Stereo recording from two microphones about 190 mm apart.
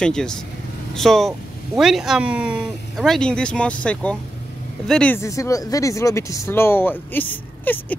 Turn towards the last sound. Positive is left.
turn(degrees=10)  # may be behind; listen again after turning